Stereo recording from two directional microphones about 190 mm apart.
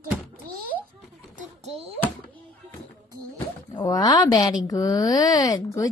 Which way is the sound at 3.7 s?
20° left (ahead or behind).